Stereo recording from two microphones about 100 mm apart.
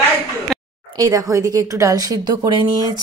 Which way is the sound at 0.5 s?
5° left (ahead or behind).